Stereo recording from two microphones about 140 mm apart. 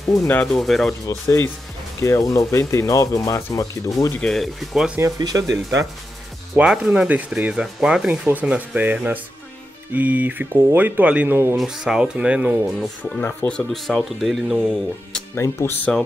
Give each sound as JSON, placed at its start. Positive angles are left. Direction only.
{"t": 0.2, "sound": "speech", "side_deg": 15}
{"t": 0.5, "sound": "speech", "side_deg": 0}
{"t": 1.0, "sound": "speech", "side_deg": 20}
{"t": 4.2, "sound": "speech", "side_deg": 0}
{"t": 4.9, "sound": "speech", "side_deg": -25}
{"t": 6.6, "sound": "speech", "side_deg": -5}
{"t": 11.5, "sound": "speech", "side_deg": -5}
{"t": 13.0, "sound": "speech", "side_deg": 15}
{"t": 15.3, "sound": "speech", "side_deg": 20}